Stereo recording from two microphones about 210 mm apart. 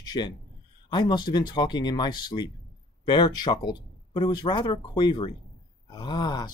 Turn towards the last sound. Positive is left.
turn(degrees=20)  # may be behind; listen again after turning